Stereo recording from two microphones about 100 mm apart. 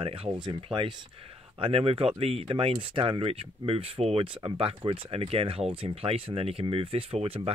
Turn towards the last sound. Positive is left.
turn(degrees=-75)  # may be behind; listen again after turning